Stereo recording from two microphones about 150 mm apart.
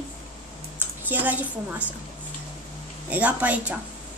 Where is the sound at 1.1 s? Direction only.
10° right (ahead or behind).